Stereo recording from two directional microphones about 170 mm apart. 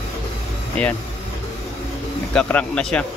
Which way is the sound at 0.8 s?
10° left (ahead or behind).